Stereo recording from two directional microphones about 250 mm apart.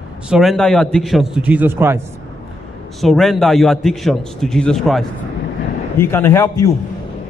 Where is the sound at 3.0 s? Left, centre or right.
Centre.